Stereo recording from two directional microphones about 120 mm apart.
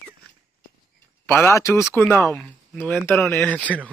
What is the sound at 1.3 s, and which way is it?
Speech, 20° left (ahead or behind).